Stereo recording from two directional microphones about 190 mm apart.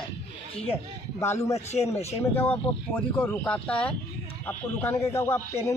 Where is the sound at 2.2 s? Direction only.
10° left (ahead or behind).